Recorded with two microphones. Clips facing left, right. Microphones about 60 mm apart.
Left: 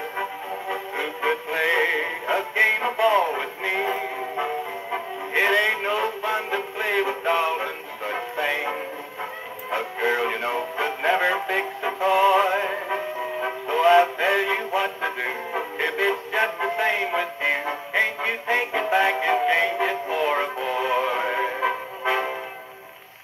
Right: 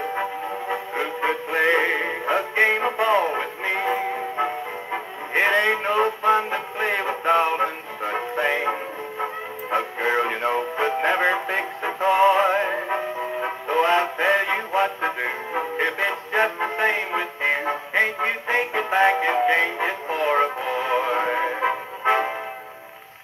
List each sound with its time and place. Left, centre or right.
0.2 s music: right
5.3 s radio: right
6.2 s music: right
9.9 s music: right
11.8 s synthetic singing: right
12.8 s music: centre
13.7 s music: right